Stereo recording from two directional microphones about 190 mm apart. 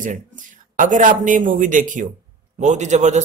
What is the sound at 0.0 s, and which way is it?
Speech, 45° right (ahead or behind).